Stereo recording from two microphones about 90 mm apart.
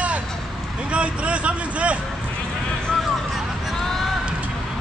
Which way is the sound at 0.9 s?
15° right (ahead or behind).